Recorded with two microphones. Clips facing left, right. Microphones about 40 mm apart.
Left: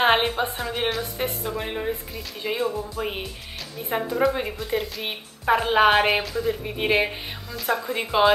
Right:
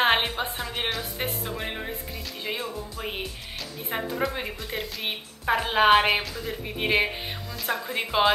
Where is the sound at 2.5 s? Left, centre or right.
Left.